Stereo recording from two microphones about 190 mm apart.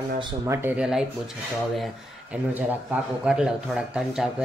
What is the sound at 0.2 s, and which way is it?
Speech, 15° right (ahead or behind).